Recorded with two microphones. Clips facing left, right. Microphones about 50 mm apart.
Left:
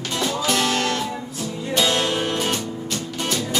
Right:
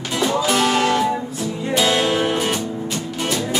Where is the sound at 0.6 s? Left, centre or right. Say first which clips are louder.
Right 5 dB; centre.